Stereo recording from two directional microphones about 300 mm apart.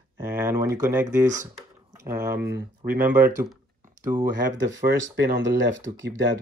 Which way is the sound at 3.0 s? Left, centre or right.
Centre.